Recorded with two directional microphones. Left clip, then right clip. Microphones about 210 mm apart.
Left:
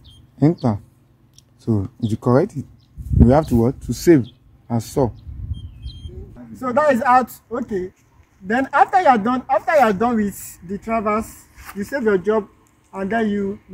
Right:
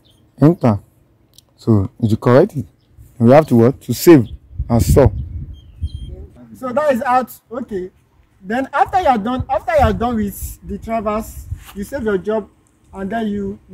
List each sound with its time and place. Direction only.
0.4 s speech: 40° right (ahead or behind)
6.6 s speech: 10° right (ahead or behind)